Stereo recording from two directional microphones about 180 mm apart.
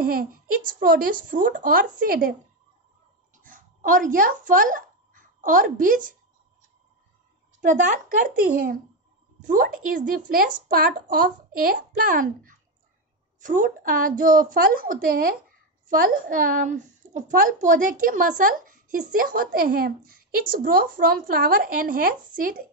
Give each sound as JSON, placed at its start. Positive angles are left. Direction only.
{"t": 0.0, "sound": "a woman's voice", "side_deg": -55}
{"t": 3.4, "sound": "a woman's voice", "side_deg": -50}
{"t": 7.6, "sound": "a woman's voice", "side_deg": -45}
{"t": 9.5, "sound": "a woman's voice", "side_deg": -50}